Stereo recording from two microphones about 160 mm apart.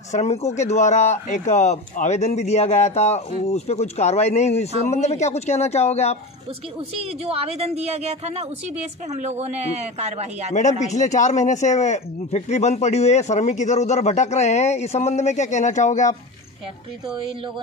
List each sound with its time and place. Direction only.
0.1 s speech: 45° left (ahead or behind)
7.0 s a woman's voice: 40° right (ahead or behind)
10.5 s speech: 50° left (ahead or behind)